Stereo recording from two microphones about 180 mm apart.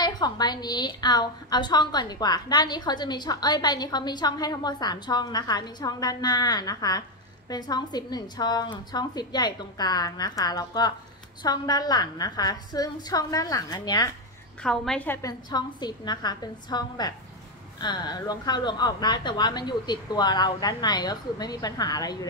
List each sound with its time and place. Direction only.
0.0 s a woman's voice: 25° left (ahead or behind)
14.6 s a woman's voice: 5° left (ahead or behind)
15.2 s a woman's voice: 20° left (ahead or behind)